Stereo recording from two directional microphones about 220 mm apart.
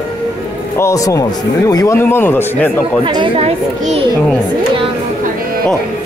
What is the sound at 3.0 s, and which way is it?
A child's voice, 20° right (ahead or behind).